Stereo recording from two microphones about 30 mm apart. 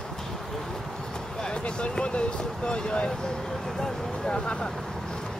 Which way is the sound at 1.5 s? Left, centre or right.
Left.